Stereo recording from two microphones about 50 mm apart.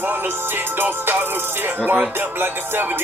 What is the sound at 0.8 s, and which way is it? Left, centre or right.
Music, right.